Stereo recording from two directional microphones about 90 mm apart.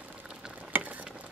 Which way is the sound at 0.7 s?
15° right (ahead or behind).